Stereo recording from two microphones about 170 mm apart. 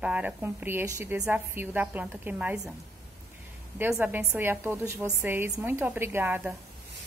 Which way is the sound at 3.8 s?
10° right (ahead or behind).